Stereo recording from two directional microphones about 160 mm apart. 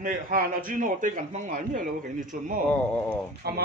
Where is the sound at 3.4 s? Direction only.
80° right.